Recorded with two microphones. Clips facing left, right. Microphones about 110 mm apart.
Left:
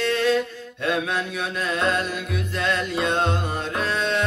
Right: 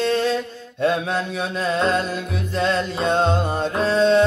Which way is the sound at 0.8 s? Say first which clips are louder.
Right 4 dB; 30° right (ahead or behind).